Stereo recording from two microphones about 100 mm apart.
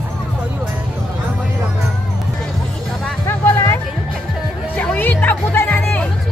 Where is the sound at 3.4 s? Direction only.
25° left (ahead or behind).